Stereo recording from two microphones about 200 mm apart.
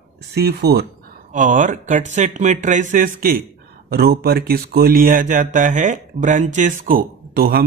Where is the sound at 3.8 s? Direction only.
50° right (ahead or behind).